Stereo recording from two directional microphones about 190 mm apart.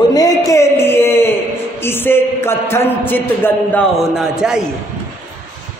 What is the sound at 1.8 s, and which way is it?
A man's voice, 10° left (ahead or behind).